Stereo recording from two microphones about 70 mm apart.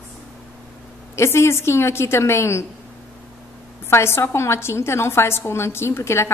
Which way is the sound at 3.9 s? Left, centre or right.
Left.